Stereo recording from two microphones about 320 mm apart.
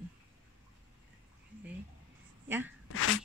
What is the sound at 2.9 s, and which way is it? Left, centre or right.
Sneeze, left.